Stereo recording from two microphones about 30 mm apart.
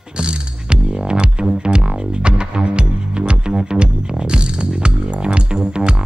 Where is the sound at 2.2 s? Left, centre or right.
Right.